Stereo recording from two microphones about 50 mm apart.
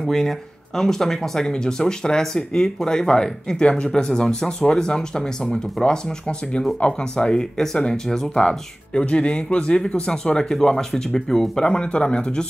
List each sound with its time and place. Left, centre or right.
0.0 s speech: centre